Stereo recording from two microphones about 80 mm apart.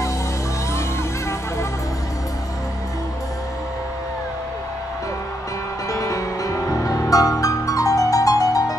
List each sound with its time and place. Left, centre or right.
5.9 s music: left